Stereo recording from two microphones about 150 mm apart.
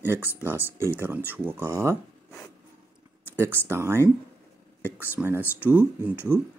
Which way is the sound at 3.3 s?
15° right (ahead or behind).